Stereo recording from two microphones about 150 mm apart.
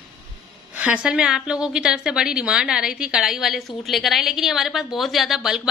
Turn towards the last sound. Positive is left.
turn(degrees=0)  # may be behind; listen again after turning